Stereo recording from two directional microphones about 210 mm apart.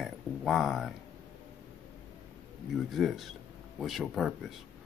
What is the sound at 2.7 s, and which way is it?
Speech, centre (ahead or behind).